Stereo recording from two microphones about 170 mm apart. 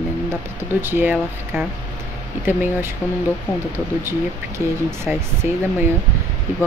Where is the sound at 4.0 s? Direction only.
15° right (ahead or behind).